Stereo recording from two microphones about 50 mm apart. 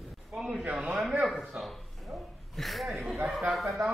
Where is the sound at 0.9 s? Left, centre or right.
Centre.